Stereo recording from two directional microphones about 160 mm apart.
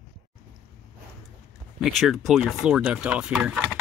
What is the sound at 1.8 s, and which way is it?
Speech, centre (ahead or behind).